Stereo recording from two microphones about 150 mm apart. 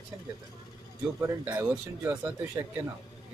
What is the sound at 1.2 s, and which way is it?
Speech, 15° right (ahead or behind).